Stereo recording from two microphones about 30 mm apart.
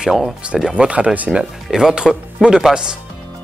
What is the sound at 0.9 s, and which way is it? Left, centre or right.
Speech, right.